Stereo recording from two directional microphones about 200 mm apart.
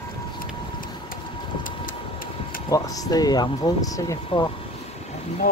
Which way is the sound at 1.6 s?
45° left (ahead or behind).